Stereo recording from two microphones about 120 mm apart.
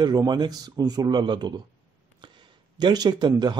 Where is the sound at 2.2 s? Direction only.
40° right (ahead or behind).